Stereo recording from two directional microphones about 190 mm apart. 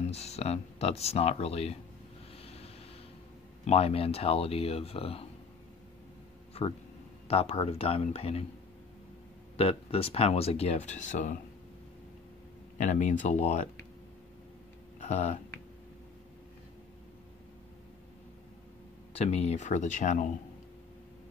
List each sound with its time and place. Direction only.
0.1 s speech: 35° left (ahead or behind)
2.3 s a sound: 30° left (ahead or behind)
3.6 s speech: 30° left (ahead or behind)
6.5 s speech: 30° left (ahead or behind)
9.6 s speech: 30° left (ahead or behind)
12.7 s speech: 40° left (ahead or behind)
15.0 s speech: 40° left (ahead or behind)
19.1 s speech: 35° left (ahead or behind)